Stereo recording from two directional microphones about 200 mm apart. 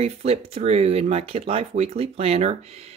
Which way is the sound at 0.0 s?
30° right (ahead or behind).